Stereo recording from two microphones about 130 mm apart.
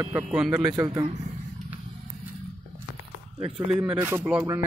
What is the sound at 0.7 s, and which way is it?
Speech, 30° right (ahead or behind).